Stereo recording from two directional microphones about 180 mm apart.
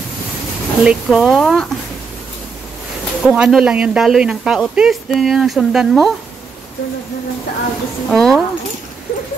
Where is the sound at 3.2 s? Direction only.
5° right (ahead or behind).